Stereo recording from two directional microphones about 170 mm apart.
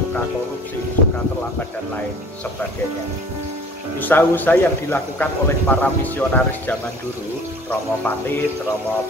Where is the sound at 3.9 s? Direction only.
10° left (ahead or behind).